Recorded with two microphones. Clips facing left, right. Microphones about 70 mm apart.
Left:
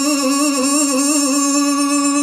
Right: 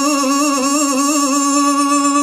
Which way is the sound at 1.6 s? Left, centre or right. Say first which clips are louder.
Right 2 dB; right.